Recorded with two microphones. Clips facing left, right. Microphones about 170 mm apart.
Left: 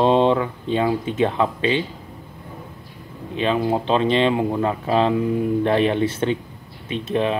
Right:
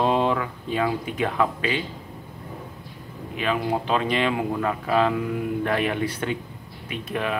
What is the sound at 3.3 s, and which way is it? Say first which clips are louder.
Speech: left 4 dB; 25° left (ahead or behind).